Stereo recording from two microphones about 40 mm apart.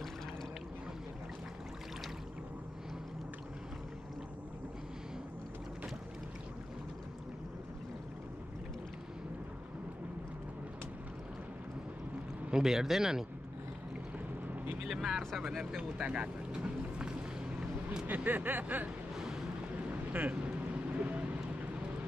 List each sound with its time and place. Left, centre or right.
12.4 s speech: centre
14.9 s speech: centre
15.6 s vehicle: right
18.0 s speech: right
19.1 s vehicle: centre
20.1 s vehicle: right